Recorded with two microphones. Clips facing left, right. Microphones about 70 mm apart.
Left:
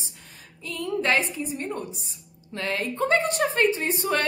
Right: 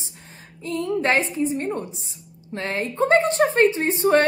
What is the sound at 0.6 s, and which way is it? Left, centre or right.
A woman's voice, right.